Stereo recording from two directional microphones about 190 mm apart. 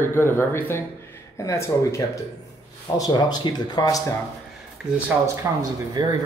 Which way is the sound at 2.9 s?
20° left (ahead or behind).